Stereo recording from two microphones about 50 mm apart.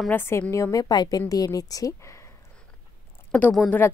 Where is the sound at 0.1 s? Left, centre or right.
Left.